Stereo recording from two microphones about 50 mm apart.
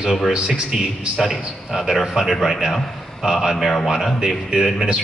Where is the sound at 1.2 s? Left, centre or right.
Centre.